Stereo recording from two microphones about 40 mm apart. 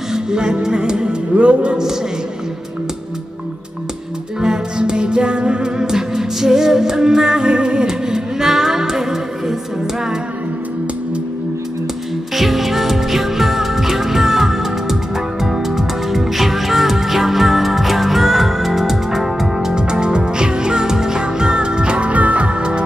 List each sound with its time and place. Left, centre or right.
0.1 s music: centre
1.3 s music: right
4.4 s music: centre
12.4 s music: centre; by 22.8 s right